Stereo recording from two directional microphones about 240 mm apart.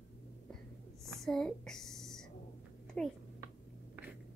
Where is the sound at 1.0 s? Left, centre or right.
Centre.